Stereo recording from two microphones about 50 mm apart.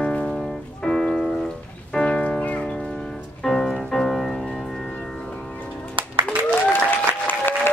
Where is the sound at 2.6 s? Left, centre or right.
Centre.